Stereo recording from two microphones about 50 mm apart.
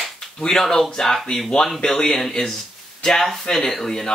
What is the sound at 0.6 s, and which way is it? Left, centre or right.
Speech, centre.